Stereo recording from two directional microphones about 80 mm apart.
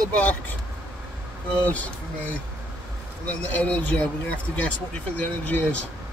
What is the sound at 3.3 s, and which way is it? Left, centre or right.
Speech, centre.